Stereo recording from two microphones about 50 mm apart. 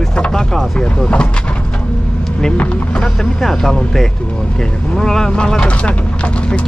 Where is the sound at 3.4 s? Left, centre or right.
Centre; by 5.9 s left.